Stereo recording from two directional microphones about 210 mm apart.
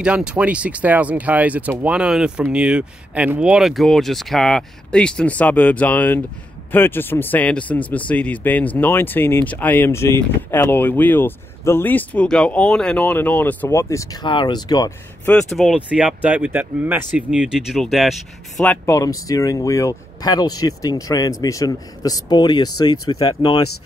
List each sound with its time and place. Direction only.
0.0 s speech: 5° right (ahead or behind); by 15.3 s 20° left (ahead or behind)
15.3 s speech: centre (ahead or behind); by 23.6 s 20° left (ahead or behind)